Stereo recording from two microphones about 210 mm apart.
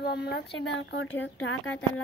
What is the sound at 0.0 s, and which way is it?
Speech, 50° left (ahead or behind).